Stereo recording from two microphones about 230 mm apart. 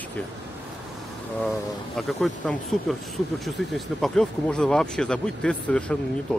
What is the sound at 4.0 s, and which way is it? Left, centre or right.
Speech, centre.